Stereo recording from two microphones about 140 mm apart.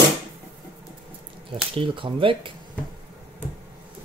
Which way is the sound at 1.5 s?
40° right (ahead or behind).